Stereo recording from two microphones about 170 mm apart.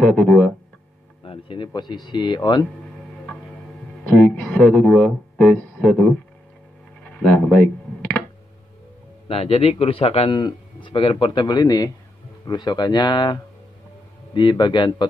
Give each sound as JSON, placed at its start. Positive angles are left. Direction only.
{"t": 0.0, "sound": "speech", "side_deg": 5}
{"t": 1.2, "sound": "speech", "side_deg": 30}
{"t": 4.2, "sound": "speech", "side_deg": 0}
{"t": 7.1, "sound": "a sound", "side_deg": 0}
{"t": 9.3, "sound": "a man's voice", "side_deg": 35}